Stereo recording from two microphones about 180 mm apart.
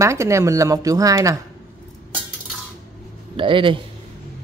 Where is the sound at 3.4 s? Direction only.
30° right (ahead or behind).